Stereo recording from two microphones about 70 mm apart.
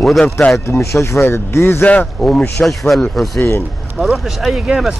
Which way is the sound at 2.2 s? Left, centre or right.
Centre.